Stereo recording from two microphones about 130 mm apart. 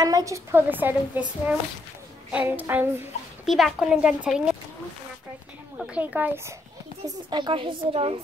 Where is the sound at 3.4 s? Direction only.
Centre (ahead or behind).